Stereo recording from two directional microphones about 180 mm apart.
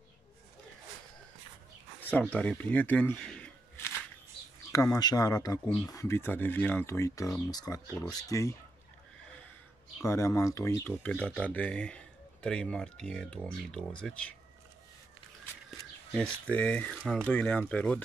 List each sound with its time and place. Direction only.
2.0 s a sound: 10° left (ahead or behind)
2.3 s speech: 5° left (ahead or behind)
10.0 s speech: 15° left (ahead or behind)
16.1 s speech: 5° left (ahead or behind)